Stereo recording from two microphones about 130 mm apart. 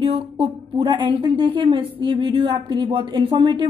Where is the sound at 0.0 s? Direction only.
45° right (ahead or behind).